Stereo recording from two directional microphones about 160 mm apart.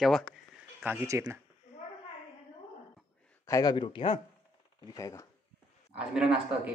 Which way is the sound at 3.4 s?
20° left (ahead or behind).